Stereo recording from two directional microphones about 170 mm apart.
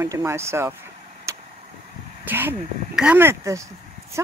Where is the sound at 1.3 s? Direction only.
15° right (ahead or behind).